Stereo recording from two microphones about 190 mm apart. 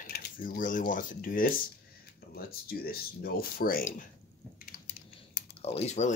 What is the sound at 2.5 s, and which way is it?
Speech, 50° left (ahead or behind).